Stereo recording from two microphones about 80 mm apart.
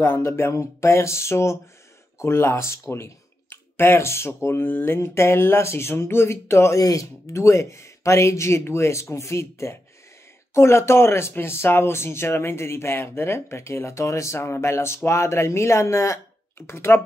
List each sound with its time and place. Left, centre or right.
0.2 s speech: left
6.8 s speech: left